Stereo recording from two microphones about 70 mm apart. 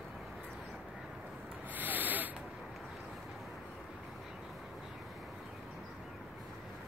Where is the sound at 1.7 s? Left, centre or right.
Right.